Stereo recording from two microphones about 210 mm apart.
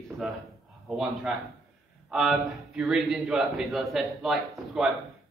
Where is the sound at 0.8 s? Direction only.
Centre (ahead or behind).